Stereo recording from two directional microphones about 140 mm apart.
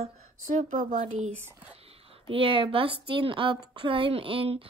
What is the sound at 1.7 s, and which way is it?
A woman's voice, 45° right (ahead or behind).